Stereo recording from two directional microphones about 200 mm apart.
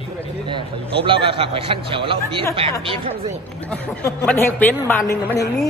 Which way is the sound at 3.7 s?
10° left (ahead or behind).